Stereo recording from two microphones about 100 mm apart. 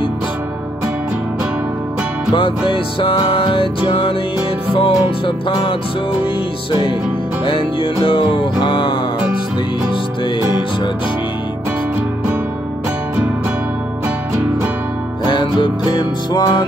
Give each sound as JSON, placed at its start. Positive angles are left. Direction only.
{"t": 2.7, "sound": "music", "side_deg": 55}
{"t": 7.4, "sound": "music", "side_deg": 60}
{"t": 15.2, "sound": "music", "side_deg": 50}